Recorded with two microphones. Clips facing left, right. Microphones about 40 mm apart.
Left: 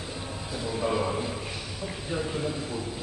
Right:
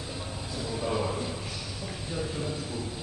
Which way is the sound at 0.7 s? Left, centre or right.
Centre.